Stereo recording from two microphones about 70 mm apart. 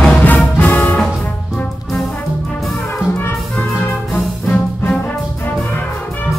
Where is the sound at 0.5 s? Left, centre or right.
Left.